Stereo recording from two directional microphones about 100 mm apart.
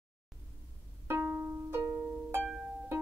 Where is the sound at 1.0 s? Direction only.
20° right (ahead or behind).